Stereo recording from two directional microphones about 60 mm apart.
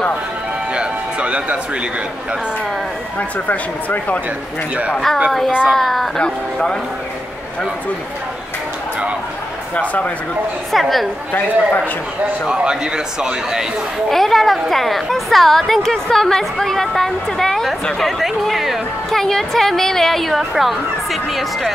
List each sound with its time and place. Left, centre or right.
0.7 s music: centre
3.2 s speech: left
4.9 s a woman's voice: centre
9.8 s speech: left
10.7 s speech: centre
11.3 s speech: left
12.4 s a man's voice: centre
14.1 s a woman's voice: centre